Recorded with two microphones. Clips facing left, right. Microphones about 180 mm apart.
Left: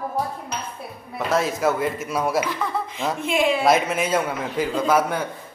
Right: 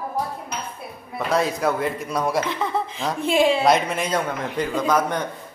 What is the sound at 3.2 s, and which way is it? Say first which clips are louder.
Speech: right 3 dB; 30° right (ahead or behind).